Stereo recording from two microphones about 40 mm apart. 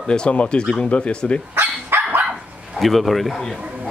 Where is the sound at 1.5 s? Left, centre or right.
Right.